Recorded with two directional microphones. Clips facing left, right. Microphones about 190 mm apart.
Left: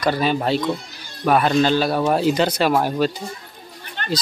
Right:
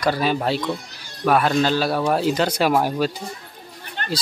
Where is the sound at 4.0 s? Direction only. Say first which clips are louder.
Left 1 dB; 40° right (ahead or behind).